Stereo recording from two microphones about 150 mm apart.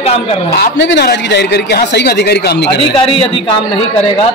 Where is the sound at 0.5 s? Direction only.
90° left.